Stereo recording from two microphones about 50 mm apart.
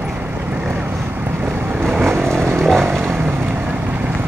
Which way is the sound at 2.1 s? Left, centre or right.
Right.